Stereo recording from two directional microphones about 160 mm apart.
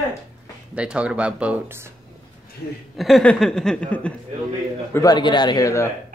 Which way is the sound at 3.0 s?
5° left (ahead or behind).